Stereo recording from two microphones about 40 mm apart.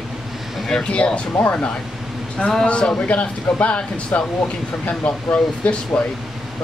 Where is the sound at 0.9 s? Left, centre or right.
Left.